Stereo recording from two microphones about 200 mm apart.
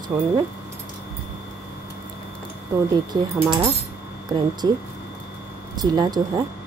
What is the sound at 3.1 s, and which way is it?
Speech, 20° right (ahead or behind).